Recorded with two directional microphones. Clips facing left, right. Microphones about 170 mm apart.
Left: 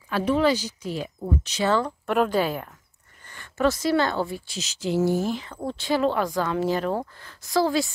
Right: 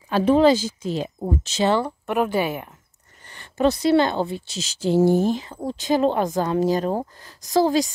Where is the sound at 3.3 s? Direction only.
20° right (ahead or behind).